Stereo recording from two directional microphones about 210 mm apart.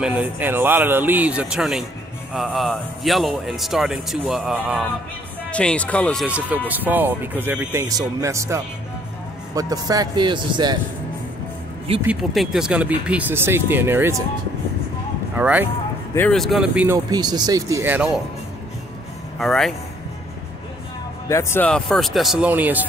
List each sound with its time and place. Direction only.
0.0 s speech: 10° right (ahead or behind)
6.2 s a man's voice: 5° right (ahead or behind)
12.0 s speech: 5° right (ahead or behind)
15.3 s speech: 10° right (ahead or behind)
16.2 s speech: 5° left (ahead or behind)
19.3 s speech: centre (ahead or behind)
21.3 s speech: 15° left (ahead or behind); by 22.8 s 10° right (ahead or behind)